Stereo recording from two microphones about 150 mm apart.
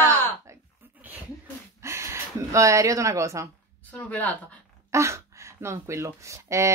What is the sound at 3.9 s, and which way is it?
Speech, 10° left (ahead or behind).